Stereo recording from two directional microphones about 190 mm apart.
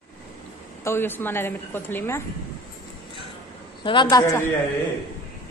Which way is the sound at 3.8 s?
25° left (ahead or behind).